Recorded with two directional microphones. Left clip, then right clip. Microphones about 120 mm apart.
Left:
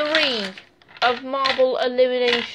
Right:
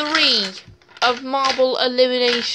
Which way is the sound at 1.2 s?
40° right (ahead or behind).